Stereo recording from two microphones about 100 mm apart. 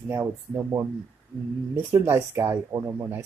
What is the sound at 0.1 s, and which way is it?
Speech, 30° right (ahead or behind).